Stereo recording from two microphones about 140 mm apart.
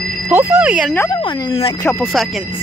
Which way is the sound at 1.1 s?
35° left (ahead or behind).